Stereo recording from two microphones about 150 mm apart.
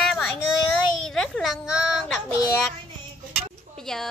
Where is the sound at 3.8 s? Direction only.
5° left (ahead or behind).